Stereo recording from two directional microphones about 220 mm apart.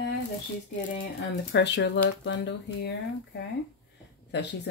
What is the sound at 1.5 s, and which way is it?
Speech, 50° left (ahead or behind).